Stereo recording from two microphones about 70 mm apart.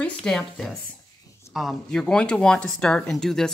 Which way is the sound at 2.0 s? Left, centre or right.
Centre.